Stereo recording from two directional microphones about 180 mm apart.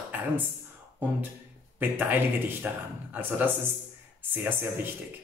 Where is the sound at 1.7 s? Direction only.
10° right (ahead or behind).